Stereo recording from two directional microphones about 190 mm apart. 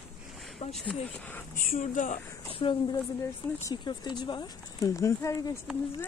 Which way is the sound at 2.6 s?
25° left (ahead or behind).